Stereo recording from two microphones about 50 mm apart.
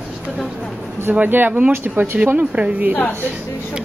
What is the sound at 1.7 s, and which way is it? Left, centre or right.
Speech, right.